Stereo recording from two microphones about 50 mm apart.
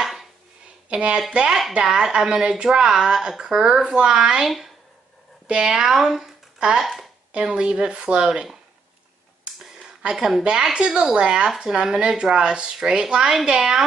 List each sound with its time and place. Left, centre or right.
0.0 s a sound: centre
0.8 s speech: right
5.5 s speech: centre
7.3 s speech: right
9.6 s a sound: centre
10.6 s speech: centre